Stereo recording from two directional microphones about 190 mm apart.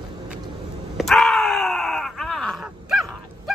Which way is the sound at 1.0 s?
Centre (ahead or behind).